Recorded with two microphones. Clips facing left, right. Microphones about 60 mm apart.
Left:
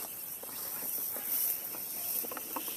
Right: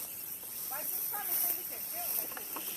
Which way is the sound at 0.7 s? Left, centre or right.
Right.